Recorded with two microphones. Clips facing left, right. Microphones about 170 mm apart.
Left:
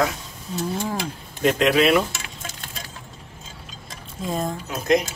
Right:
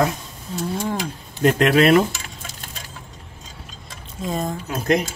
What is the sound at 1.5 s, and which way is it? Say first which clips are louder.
Speech: right 3 dB; 50° right (ahead or behind).